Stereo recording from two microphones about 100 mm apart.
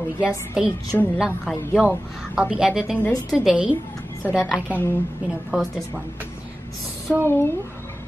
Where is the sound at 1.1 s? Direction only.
5° right (ahead or behind).